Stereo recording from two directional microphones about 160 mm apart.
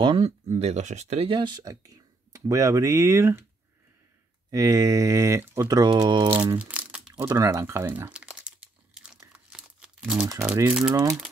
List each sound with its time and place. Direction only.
0.0 s speech: 30° right (ahead or behind)
0.5 s speech: 45° right (ahead or behind); by 3.4 s 15° right (ahead or behind)
4.5 s speech: 20° right (ahead or behind)
6.6 s crumpling: 5° right (ahead or behind)
7.3 s crumpling: 20° right (ahead or behind); by 10.2 s 5° right (ahead or behind)
10.4 s speech: 10° right (ahead or behind)